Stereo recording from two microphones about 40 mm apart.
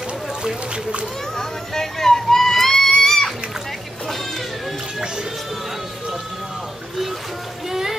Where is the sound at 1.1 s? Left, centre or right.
Centre.